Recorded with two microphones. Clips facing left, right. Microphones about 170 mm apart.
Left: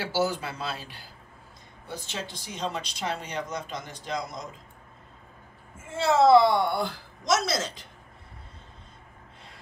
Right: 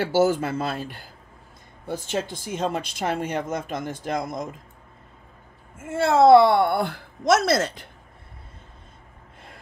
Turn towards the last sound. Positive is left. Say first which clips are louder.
# right 7 dB
turn(degrees=-60)  # may be behind; listen again after turning